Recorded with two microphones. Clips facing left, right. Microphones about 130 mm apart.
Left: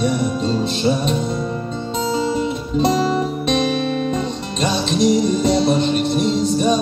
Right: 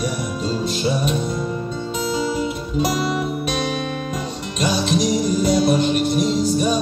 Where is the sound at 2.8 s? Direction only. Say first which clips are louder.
Left 4 dB; 30° left (ahead or behind).